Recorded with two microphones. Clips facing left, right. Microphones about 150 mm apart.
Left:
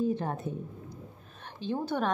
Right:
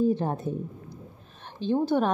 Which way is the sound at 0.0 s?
30° right (ahead or behind).